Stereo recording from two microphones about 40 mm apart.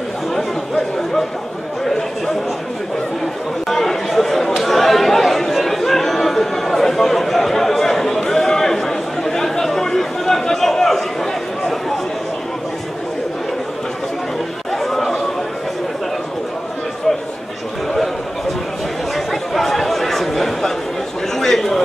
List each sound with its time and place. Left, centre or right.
0.4 s chatter: centre
3.6 s chatter: centre
14.7 s chatter: centre
19.1 s chatter: centre
21.4 s a sound: centre